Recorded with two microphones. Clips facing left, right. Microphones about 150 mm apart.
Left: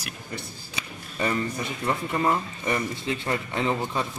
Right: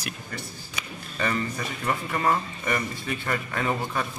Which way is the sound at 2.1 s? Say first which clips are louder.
Right 1 dB; 20° left (ahead or behind).